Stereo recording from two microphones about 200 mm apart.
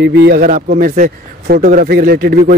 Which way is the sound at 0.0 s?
60° right (ahead or behind).